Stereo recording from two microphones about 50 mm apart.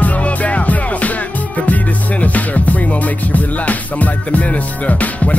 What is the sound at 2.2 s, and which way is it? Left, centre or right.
Music, left.